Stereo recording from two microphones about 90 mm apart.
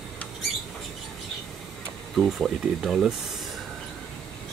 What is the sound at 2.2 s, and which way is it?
Speech, 5° right (ahead or behind).